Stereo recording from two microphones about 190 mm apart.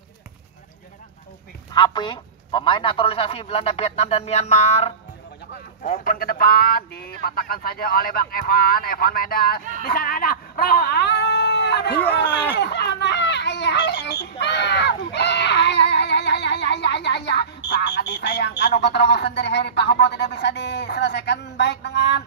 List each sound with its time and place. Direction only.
1.7 s a man's voice: 20° left (ahead or behind)
6.0 s speech: 50° left (ahead or behind)
12.5 s children playing: 60° left (ahead or behind)
18.6 s speech: 65° left (ahead or behind)